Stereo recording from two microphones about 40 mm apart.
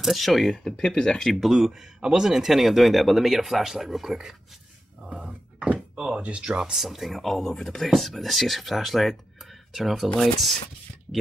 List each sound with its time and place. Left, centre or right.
0.0 s speech: centre
0.8 s speech: centre
1.3 s speech: centre
1.7 s speech: centre
5.1 s a sound: right
6.1 s speech: right; by 10.0 s centre
10.0 s speech: centre
11.1 s speech: centre